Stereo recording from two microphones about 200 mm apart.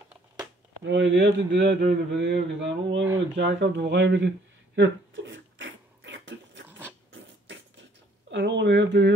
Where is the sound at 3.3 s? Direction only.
60° right (ahead or behind).